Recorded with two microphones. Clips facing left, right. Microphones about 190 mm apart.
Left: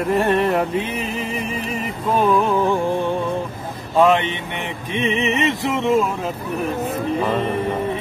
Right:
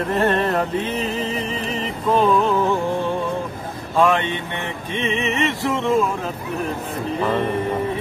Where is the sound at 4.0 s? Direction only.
20° left (ahead or behind).